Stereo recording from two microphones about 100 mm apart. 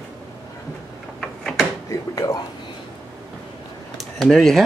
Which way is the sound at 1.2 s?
Centre (ahead or behind).